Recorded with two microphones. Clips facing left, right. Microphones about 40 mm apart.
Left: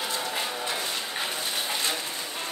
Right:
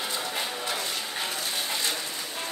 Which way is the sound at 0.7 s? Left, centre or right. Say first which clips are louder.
Left 1 dB; centre.